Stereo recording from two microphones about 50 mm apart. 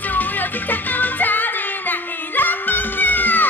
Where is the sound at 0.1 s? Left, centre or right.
Left.